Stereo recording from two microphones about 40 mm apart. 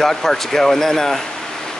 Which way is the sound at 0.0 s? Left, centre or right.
Centre.